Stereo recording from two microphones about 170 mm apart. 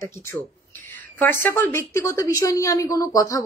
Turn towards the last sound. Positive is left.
turn(degrees=20)  # may be behind; listen again after turning